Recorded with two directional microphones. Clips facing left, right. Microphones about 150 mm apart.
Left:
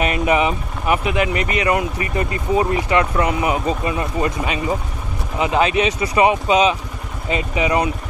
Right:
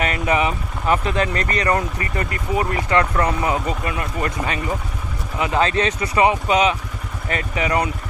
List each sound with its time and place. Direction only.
0.0 s speech: 20° left (ahead or behind)